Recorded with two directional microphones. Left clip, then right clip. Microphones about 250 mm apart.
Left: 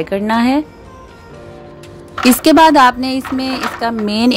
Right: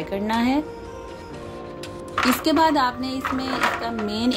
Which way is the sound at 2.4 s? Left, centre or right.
Left.